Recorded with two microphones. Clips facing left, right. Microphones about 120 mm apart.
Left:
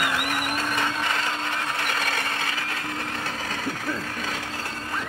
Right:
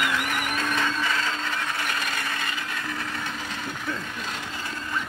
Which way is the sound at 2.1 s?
60° left (ahead or behind).